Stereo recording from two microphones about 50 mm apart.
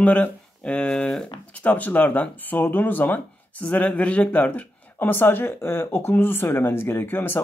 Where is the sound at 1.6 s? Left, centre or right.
Left.